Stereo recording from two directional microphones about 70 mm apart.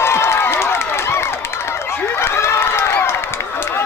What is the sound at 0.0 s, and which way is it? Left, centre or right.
Run, left.